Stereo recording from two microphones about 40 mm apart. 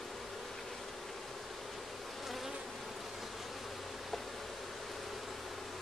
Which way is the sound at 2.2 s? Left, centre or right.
Centre.